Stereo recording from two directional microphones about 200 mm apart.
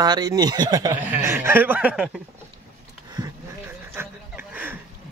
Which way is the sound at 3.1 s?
20° right (ahead or behind).